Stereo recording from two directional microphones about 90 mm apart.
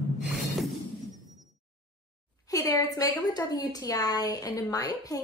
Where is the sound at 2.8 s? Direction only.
45° left (ahead or behind).